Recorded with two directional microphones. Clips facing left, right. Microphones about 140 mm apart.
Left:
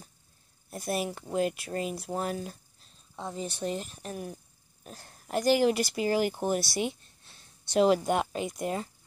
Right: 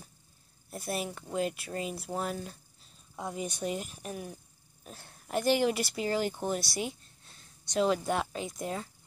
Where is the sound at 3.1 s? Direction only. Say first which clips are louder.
Even; 10° right (ahead or behind).